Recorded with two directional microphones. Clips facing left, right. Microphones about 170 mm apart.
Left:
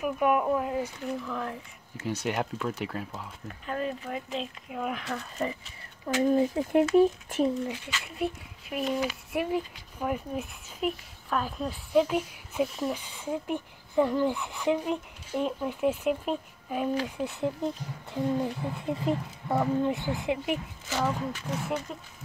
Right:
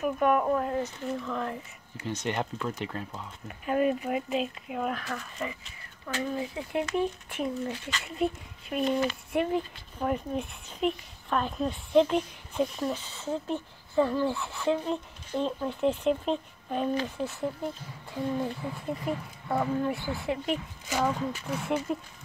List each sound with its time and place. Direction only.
0.0 s speech: 10° left (ahead or behind)
3.4 s speech: 10° right (ahead or behind)
4.9 s speech: 20° left (ahead or behind)
6.2 s speech: 40° left (ahead or behind)
7.6 s speech: 5° left (ahead or behind)
20.9 s speech: 10° right (ahead or behind)